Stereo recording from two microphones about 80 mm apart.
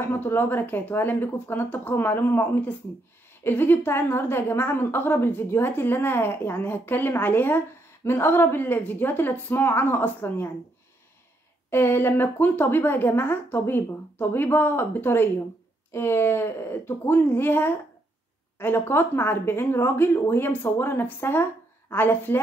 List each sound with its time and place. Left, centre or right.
0.1 s a woman's voice: left
11.7 s a woman's voice: left